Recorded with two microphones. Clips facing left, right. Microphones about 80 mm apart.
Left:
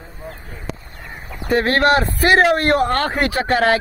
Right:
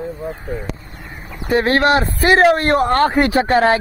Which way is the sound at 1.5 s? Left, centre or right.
Centre.